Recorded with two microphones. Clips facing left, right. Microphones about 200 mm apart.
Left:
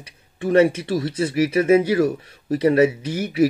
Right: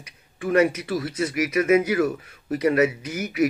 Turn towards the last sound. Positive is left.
turn(degrees=30)  # may be behind; listen again after turning